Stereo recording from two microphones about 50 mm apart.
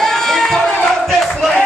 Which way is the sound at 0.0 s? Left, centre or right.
Centre.